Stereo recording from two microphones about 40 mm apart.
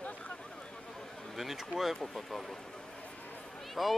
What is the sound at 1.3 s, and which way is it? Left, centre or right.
Speech, centre.